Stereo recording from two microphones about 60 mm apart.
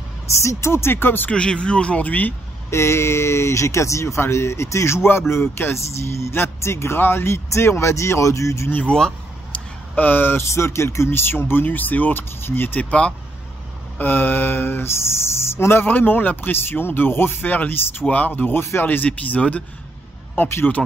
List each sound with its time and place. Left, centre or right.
0.4 s speech: left
1.3 s speech: centre
2.7 s speech: left
8.9 s speech: centre
9.9 s speech: left
10.5 s speech: left
11.1 s speech: left
13.9 s speech: left
18.9 s speech: left
20.3 s speech: left